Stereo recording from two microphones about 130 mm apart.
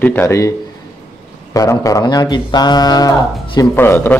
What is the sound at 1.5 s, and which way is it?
A man's voice, 25° left (ahead or behind).